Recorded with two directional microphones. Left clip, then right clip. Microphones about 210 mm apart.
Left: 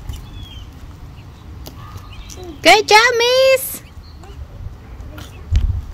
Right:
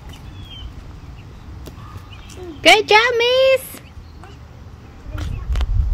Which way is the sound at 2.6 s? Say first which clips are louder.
Left 2 dB; 10° left (ahead or behind).